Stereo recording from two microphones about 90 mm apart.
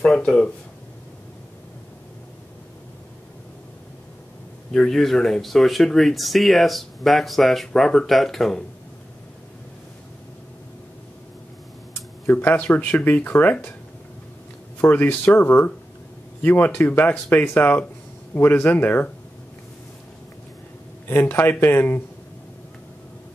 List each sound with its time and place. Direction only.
0.0 s speech: 5° left (ahead or behind)
4.7 s speech: 5° left (ahead or behind)
12.3 s speech: 20° left (ahead or behind)
14.8 s speech: 20° left (ahead or behind)
21.1 s speech: 25° left (ahead or behind)